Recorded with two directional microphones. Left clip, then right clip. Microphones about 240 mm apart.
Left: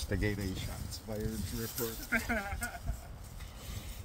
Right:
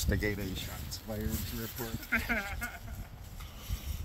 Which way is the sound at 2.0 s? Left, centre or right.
Left.